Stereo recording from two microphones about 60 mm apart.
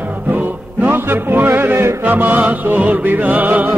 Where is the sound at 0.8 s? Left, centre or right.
Right.